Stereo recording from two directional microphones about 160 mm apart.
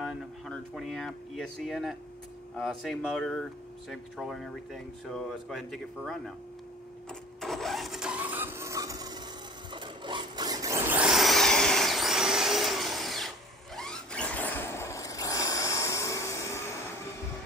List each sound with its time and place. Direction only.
0.0 s speech: centre (ahead or behind)
7.1 s vehicle: centre (ahead or behind); by 9.2 s 25° right (ahead or behind)
9.7 s a sound: 30° right (ahead or behind); by 13.3 s centre (ahead or behind)
13.7 s vehicle: 5° left (ahead or behind)